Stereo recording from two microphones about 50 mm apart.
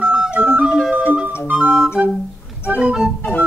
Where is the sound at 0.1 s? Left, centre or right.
Right.